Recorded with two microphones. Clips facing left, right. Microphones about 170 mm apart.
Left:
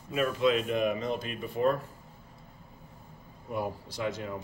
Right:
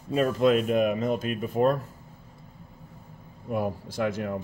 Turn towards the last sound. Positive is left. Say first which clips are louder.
# right 5 dB
turn(degrees=-55)  # may be behind; listen again after turning